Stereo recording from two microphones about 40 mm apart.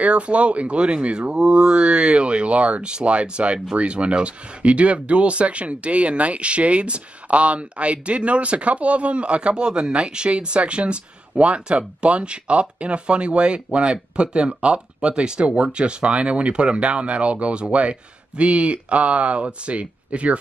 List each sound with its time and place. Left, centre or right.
0.0 s speech: right